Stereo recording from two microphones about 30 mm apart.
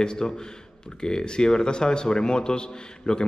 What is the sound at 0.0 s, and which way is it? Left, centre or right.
A man's voice, left.